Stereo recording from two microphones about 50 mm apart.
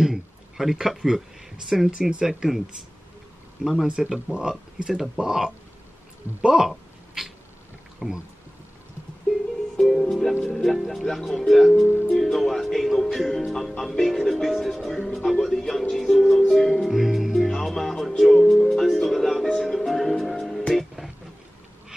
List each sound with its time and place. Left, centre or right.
0.0 s speech: centre
3.8 s speech: centre
4.9 s speech: centre
5.2 s speech: centre
8.0 s speech: centre
9.8 s music: centre
10.5 s speech: centre
12.1 s music: centre